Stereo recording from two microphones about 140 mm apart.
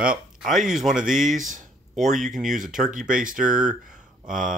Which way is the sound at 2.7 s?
65° right (ahead or behind).